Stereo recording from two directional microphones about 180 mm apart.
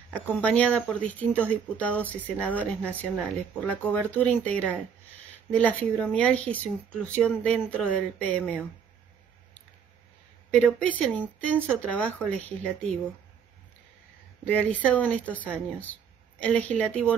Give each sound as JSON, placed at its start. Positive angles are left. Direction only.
{"t": 0.1, "sound": "speech", "side_deg": 5}
{"t": 10.8, "sound": "speech", "side_deg": 5}
{"t": 14.4, "sound": "speech", "side_deg": 10}